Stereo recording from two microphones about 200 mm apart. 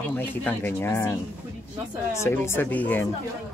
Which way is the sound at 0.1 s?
10° left (ahead or behind).